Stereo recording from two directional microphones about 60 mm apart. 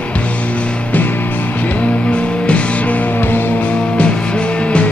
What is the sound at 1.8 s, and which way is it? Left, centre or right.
Music, centre.